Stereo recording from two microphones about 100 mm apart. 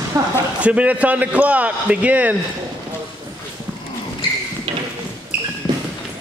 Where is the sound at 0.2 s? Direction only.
35° right (ahead or behind).